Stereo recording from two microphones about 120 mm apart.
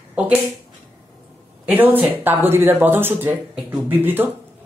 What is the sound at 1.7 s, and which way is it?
Speech, 15° right (ahead or behind).